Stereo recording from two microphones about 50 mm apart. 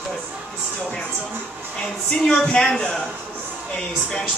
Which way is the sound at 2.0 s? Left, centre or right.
Left.